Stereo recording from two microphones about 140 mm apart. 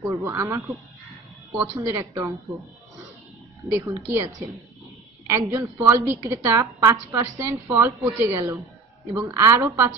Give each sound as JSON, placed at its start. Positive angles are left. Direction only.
{"t": 0.0, "sound": "a woman's voice", "side_deg": -20}
{"t": 1.9, "sound": "a woman's voice", "side_deg": -20}
{"t": 3.7, "sound": "a woman's voice", "side_deg": -20}
{"t": 5.5, "sound": "a woman's voice", "side_deg": -20}